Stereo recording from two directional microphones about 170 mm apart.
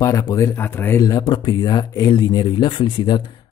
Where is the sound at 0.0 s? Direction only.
20° left (ahead or behind).